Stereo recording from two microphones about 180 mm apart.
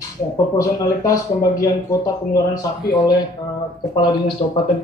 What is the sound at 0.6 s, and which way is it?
Speech, 20° left (ahead or behind).